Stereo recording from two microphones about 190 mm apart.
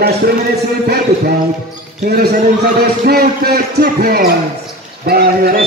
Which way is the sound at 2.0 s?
55° right (ahead or behind).